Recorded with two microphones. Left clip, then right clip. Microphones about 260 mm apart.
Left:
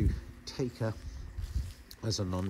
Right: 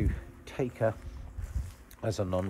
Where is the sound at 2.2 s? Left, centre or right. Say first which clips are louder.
Right 8 dB; centre.